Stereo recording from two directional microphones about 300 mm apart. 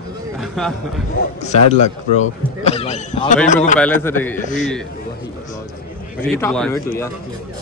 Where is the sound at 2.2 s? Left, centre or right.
Left.